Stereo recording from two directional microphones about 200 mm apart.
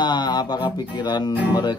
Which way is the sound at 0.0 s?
20° left (ahead or behind).